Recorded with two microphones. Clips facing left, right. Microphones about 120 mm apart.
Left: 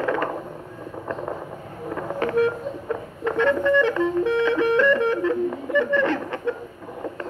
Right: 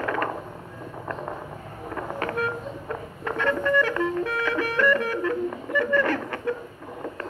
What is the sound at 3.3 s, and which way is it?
Music, 20° left (ahead or behind).